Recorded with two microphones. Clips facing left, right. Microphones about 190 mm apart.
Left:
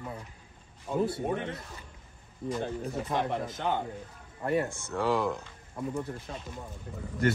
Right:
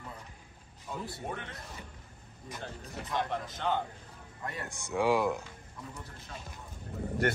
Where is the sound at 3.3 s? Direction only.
20° left (ahead or behind).